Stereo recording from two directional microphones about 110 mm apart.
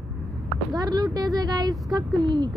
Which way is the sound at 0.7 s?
35° right (ahead or behind).